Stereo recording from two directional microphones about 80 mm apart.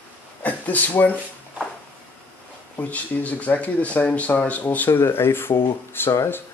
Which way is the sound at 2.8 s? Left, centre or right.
Centre.